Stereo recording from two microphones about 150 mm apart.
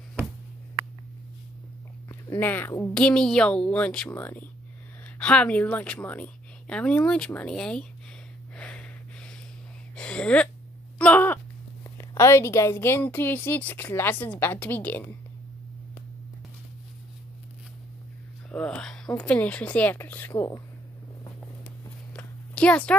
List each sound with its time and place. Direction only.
2.0 s a woman's voice: 15° left (ahead or behind)
8.5 s snort: 10° left (ahead or behind)
9.9 s a sound: 5° left (ahead or behind)
12.0 s a woman's voice: 20° left (ahead or behind)
18.5 s a woman's voice: 5° left (ahead or behind); by 20.6 s 20° left (ahead or behind)
22.1 s a sound: 5° left (ahead or behind)